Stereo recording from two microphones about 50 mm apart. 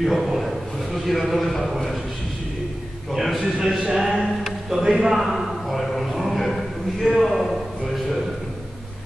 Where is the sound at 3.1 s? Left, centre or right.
Centre.